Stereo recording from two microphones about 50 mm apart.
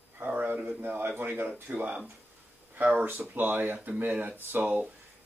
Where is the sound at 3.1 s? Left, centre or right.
Right.